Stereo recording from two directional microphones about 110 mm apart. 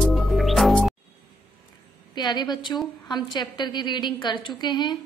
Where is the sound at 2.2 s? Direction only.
40° left (ahead or behind).